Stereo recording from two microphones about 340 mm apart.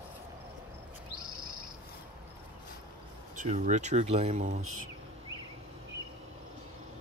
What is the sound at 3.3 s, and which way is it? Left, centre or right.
Speech, right.